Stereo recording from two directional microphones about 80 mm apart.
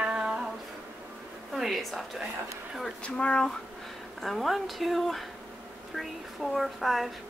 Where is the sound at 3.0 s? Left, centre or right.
Centre.